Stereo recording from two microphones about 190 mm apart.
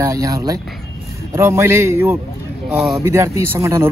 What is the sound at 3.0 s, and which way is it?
Speech, 15° right (ahead or behind).